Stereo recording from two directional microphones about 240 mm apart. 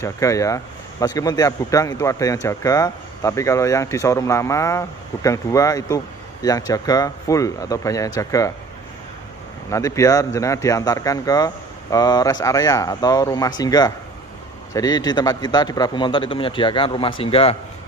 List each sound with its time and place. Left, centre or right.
0.0 s a man's voice: centre
9.7 s a man's voice: centre